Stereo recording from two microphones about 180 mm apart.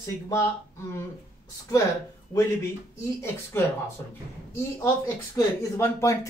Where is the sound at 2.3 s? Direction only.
20° left (ahead or behind).